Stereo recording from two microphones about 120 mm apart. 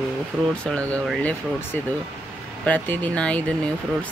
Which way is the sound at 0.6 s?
10° left (ahead or behind).